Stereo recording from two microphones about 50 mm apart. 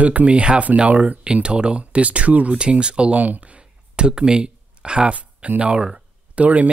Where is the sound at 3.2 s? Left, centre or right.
Right.